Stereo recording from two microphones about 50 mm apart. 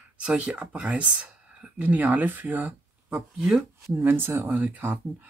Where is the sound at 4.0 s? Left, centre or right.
Right.